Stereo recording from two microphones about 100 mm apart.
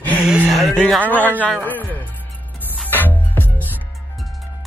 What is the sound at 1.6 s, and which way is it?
Speech, 15° left (ahead or behind).